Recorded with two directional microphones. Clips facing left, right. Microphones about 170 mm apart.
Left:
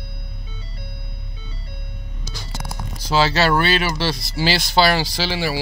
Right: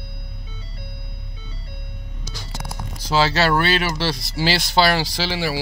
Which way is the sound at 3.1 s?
20° left (ahead or behind).